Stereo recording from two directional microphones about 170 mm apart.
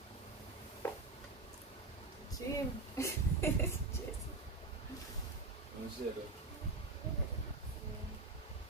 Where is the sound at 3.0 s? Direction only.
15° left (ahead or behind).